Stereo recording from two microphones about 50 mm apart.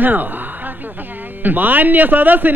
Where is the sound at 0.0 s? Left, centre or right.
Right.